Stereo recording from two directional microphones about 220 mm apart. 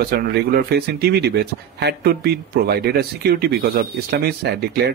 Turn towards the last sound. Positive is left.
turn(degrees=-45)  # may be behind; listen again after turning